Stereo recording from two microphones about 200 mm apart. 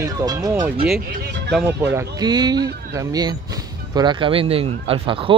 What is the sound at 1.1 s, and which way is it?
Speech, 55° right (ahead or behind).